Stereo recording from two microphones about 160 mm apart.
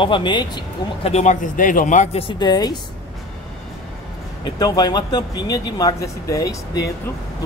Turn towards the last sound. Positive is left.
turn(degrees=20)  # may be behind; listen again after turning